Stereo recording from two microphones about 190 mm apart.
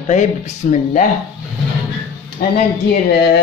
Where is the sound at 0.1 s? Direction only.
40° left (ahead or behind).